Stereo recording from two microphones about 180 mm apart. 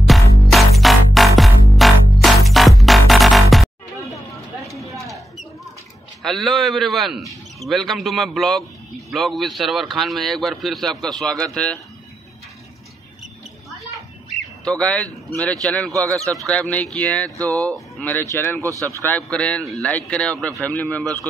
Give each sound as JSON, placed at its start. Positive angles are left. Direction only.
{"t": 0.0, "sound": "music", "side_deg": 0}
{"t": 4.9, "sound": "rodents", "side_deg": 0}
{"t": 6.2, "sound": "a man's voice", "side_deg": 0}
{"t": 14.6, "sound": "a man's voice", "side_deg": 5}
{"t": 15.9, "sound": "speech", "side_deg": -20}
{"t": 16.2, "sound": "speech", "side_deg": 5}